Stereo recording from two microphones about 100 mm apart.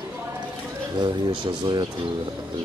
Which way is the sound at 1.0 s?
50° right (ahead or behind).